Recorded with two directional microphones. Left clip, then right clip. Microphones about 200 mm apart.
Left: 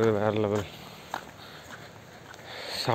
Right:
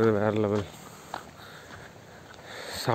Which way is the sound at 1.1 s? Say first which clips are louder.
Left 2 dB; 60° left (ahead or behind).